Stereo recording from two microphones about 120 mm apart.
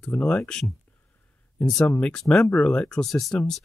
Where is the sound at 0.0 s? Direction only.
5° left (ahead or behind).